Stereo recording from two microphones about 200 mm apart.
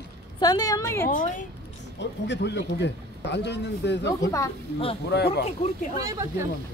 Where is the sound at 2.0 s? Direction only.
60° left (ahead or behind).